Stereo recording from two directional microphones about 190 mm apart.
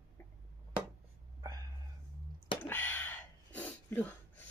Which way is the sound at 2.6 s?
10° left (ahead or behind).